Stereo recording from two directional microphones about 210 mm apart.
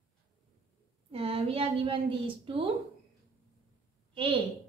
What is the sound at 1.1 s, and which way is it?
A woman's voice, 25° right (ahead or behind).